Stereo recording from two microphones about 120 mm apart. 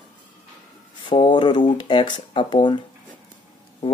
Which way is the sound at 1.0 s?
40° left (ahead or behind).